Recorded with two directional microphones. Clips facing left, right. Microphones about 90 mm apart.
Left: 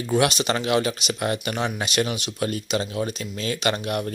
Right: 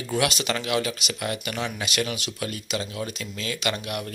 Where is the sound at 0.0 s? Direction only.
25° left (ahead or behind).